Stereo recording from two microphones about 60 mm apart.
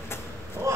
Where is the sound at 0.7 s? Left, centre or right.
Right.